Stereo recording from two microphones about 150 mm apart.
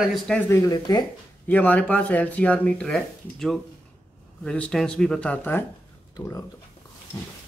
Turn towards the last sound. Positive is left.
turn(degrees=25)  # may be behind; listen again after turning